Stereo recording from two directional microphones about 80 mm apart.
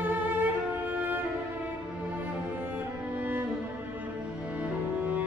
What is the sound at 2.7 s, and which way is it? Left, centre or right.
Music, right.